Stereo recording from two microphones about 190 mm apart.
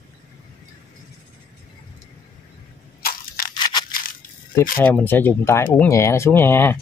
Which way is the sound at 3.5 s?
25° left (ahead or behind).